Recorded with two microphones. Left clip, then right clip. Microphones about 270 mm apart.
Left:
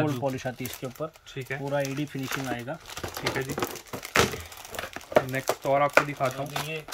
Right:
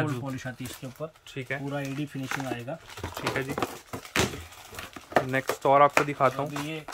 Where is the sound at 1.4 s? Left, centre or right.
Centre.